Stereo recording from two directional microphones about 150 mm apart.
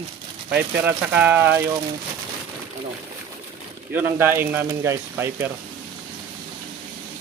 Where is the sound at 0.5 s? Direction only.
10° right (ahead or behind).